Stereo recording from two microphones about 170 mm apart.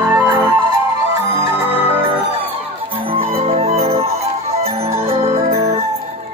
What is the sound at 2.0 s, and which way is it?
Music, 30° right (ahead or behind).